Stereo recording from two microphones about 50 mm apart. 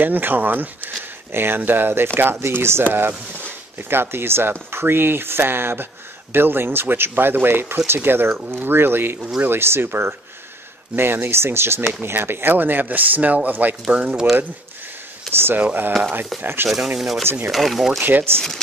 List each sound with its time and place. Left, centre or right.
0.0 s speech: right
1.3 s speech: right
2.8 s speech: right
13.9 s speech: right
15.3 s speech: right
16.0 s speech: right
16.6 s speech: centre
18.0 s speech: right